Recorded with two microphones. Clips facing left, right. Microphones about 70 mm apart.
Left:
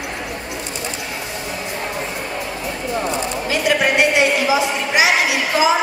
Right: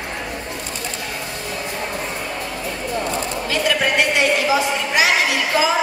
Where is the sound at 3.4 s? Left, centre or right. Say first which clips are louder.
Left 2 dB; centre.